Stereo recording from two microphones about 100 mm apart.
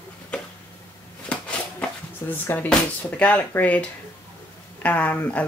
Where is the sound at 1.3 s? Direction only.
15° left (ahead or behind).